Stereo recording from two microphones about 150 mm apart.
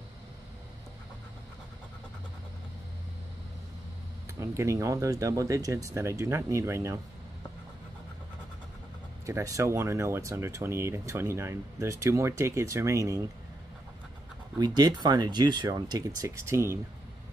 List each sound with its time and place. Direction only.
4.4 s speech: 20° right (ahead or behind)
9.2 s speech: 20° right (ahead or behind)
14.6 s speech: 25° right (ahead or behind)